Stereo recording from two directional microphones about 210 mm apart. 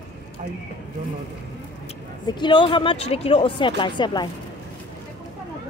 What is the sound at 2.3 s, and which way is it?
Speech, 20° left (ahead or behind).